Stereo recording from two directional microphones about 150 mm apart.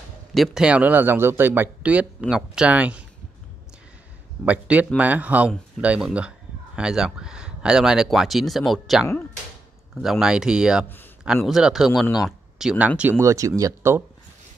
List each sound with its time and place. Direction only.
0.3 s speech: centre (ahead or behind)
4.5 s speech: 10° right (ahead or behind)
13.2 s speech: 20° right (ahead or behind)